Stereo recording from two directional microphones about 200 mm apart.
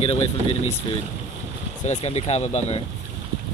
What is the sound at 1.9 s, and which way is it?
Speech, 35° left (ahead or behind).